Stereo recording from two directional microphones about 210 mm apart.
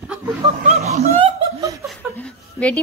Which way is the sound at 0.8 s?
30° right (ahead or behind).